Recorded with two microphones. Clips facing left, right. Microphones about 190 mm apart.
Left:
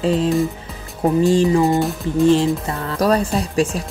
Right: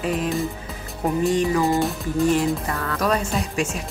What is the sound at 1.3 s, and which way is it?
Music, 30° left (ahead or behind).